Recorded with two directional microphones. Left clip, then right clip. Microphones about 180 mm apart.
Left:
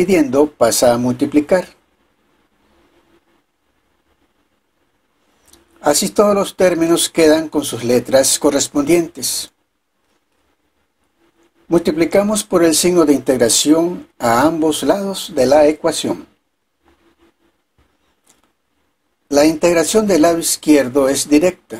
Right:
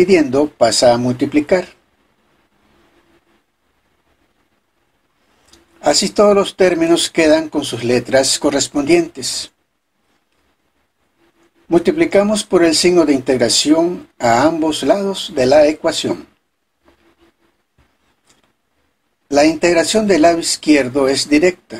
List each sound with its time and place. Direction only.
0.0 s speech: 20° left (ahead or behind)
5.8 s speech: 20° left (ahead or behind)
11.7 s speech: 20° left (ahead or behind)
19.3 s speech: 20° left (ahead or behind)